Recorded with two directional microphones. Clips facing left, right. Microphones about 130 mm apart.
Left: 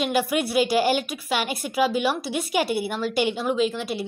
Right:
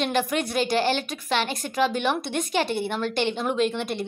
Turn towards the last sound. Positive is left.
turn(degrees=5)  # may be behind; listen again after turning